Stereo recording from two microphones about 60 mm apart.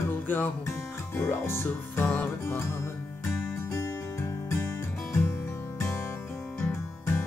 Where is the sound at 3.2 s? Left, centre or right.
Left.